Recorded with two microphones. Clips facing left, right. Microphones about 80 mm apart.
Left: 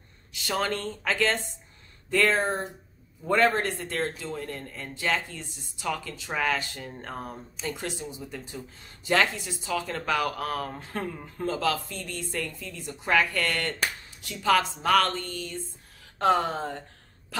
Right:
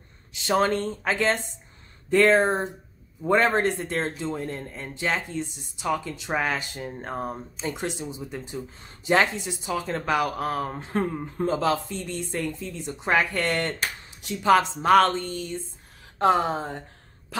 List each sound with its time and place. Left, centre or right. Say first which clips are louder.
0.3 s a man's voice: right 6 dB; right